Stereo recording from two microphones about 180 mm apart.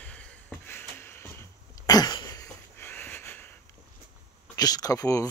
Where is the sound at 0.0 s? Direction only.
5° left (ahead or behind).